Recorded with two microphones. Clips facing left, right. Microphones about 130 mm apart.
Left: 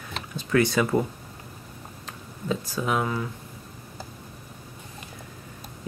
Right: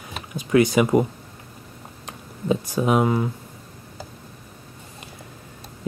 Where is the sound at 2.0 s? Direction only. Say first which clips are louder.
Right 6 dB; 20° right (ahead or behind).